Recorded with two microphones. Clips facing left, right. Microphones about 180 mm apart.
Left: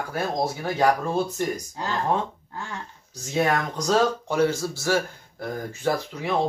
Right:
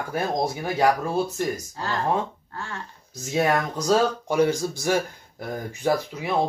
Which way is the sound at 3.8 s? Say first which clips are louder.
Even; 15° right (ahead or behind).